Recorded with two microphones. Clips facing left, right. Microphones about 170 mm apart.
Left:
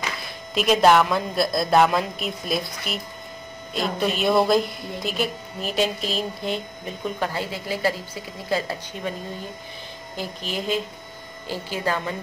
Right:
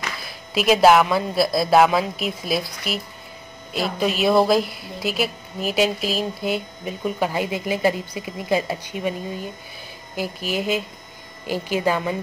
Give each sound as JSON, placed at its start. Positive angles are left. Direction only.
{"t": 0.6, "sound": "a woman's voice", "side_deg": -5}
{"t": 7.2, "sound": "a woman's voice", "side_deg": -15}
{"t": 10.1, "sound": "a woman's voice", "side_deg": -10}